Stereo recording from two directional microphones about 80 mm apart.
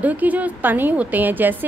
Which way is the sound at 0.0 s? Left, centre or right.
Centre.